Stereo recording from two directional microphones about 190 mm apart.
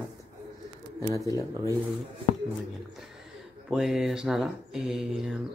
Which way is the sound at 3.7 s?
5° right (ahead or behind).